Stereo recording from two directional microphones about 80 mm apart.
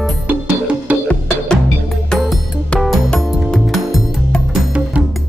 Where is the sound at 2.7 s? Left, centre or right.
Centre.